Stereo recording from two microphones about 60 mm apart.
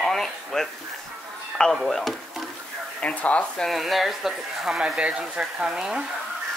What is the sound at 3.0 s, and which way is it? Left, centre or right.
Speech, left.